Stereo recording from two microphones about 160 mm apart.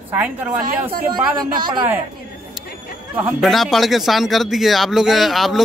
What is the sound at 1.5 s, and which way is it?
Speech, 30° right (ahead or behind).